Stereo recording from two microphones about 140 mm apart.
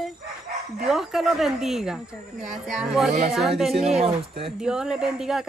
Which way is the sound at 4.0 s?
45° right (ahead or behind).